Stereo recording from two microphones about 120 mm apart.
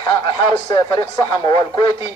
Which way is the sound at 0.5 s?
40° left (ahead or behind).